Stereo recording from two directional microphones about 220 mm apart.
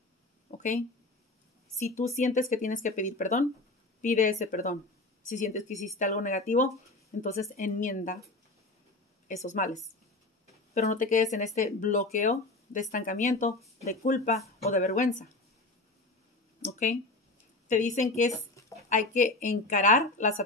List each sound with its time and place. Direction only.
0.6 s speech: 35° left (ahead or behind)
9.3 s speech: 35° left (ahead or behind)
16.6 s speech: 35° left (ahead or behind)